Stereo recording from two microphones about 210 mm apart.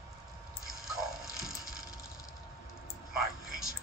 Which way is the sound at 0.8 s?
Centre (ahead or behind).